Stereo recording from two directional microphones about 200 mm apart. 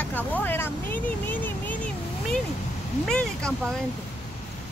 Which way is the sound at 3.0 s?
5° left (ahead or behind).